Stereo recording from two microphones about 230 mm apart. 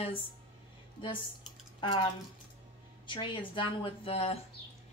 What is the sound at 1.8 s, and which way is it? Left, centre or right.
Speech, left.